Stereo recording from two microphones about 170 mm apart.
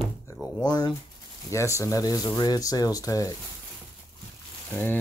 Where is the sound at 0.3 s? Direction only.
20° left (ahead or behind).